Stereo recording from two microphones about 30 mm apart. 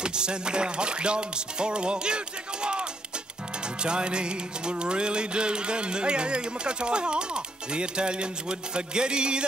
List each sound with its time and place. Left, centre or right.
0.0 s music: right